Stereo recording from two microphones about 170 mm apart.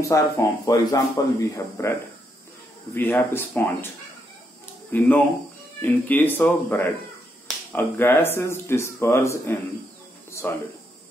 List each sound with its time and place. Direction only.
0.1 s speech: 20° left (ahead or behind)
4.9 s speech: 10° left (ahead or behind)